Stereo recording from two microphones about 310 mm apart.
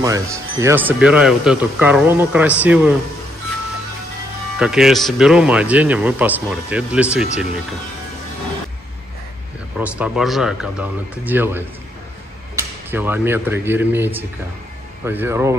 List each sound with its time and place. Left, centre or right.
0.0 s speech: centre
4.6 s speech: centre
9.8 s speech: centre